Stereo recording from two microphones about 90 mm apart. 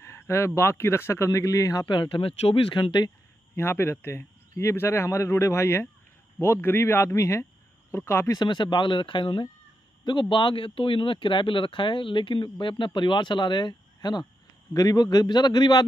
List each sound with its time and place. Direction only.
0.0 s a sound: 30° left (ahead or behind)
0.6 s speech: 30° left (ahead or behind)
1.9 s speech: 60° left (ahead or behind)
3.5 s speech: 25° left (ahead or behind)
8.4 s speech: 55° left (ahead or behind)
14.7 s a man's voice: 45° left (ahead or behind)